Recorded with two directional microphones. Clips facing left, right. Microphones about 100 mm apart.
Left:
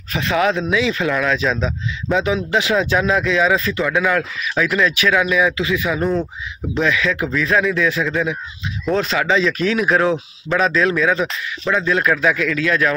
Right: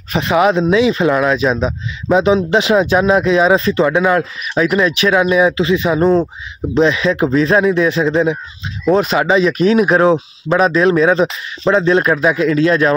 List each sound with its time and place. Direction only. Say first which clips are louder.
0.1 s speech: right 5 dB; 20° right (ahead or behind)
8.9 s speech: right 5 dB; 20° right (ahead or behind)